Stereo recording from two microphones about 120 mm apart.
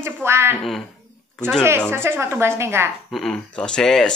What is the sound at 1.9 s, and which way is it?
Speech, 20° right (ahead or behind).